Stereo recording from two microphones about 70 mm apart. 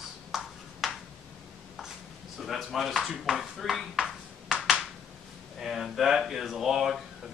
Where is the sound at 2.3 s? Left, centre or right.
Centre.